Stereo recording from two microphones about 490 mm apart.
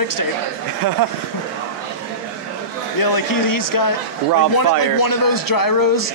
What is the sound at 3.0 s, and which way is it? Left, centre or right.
Speech, left.